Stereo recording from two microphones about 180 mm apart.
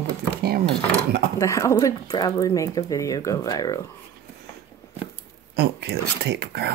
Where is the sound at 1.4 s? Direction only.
15° left (ahead or behind).